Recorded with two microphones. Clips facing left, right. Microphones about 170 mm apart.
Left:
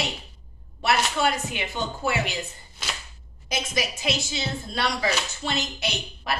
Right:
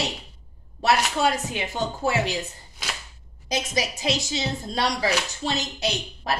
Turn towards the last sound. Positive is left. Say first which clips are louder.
# right 3 dB
turn(degrees=-40)  # may be behind; listen again after turning